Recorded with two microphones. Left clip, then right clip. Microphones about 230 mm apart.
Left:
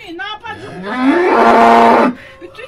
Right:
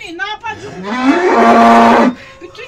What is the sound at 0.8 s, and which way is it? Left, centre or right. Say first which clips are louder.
Cattle: right 1 dB; left.